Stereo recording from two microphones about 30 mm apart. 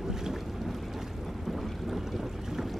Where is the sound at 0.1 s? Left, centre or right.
Centre.